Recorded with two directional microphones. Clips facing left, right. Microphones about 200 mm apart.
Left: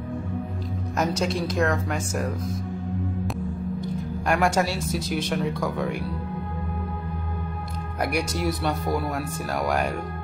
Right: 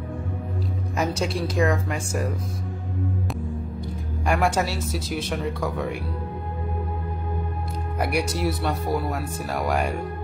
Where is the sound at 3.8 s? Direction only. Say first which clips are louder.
Left 3 dB; 5° right (ahead or behind).